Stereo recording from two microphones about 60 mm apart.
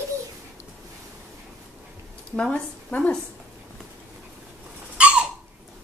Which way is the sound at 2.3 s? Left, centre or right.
Centre.